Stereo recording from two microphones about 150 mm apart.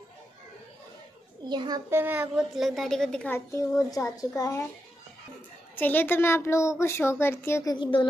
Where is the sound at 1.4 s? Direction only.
30° right (ahead or behind).